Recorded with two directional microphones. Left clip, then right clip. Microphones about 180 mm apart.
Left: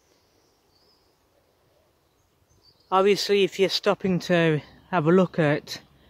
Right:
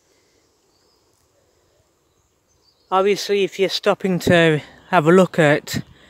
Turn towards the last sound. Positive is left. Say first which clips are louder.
# right 8 dB
turn(degrees=-20)  # may be behind; listen again after turning